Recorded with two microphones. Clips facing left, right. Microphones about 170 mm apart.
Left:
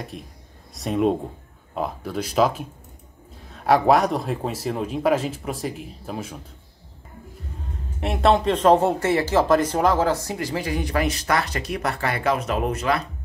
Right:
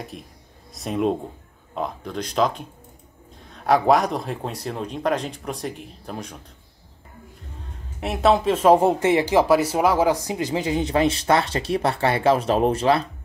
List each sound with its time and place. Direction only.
0.1 s speech: centre (ahead or behind)
8.0 s speech: centre (ahead or behind); by 13.0 s 30° right (ahead or behind)